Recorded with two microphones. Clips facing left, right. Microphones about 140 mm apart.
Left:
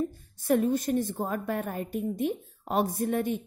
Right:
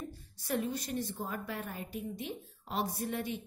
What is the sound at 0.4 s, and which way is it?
A woman's voice, 50° left (ahead or behind).